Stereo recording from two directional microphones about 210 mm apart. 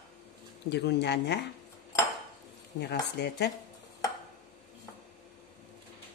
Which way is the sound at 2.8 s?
55° left (ahead or behind).